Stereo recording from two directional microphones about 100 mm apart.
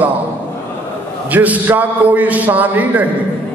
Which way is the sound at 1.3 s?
15° right (ahead or behind).